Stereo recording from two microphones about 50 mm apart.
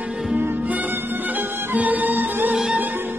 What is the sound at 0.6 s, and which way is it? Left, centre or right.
Music, right.